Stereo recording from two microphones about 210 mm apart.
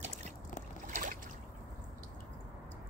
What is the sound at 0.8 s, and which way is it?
Boat, 40° right (ahead or behind).